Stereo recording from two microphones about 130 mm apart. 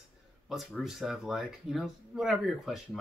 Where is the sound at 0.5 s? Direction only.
Centre (ahead or behind).